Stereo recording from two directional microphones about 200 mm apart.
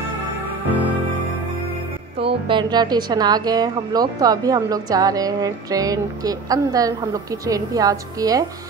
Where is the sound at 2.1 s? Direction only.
25° right (ahead or behind).